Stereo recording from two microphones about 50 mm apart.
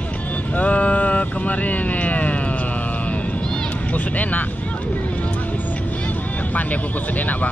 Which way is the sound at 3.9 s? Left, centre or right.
Left.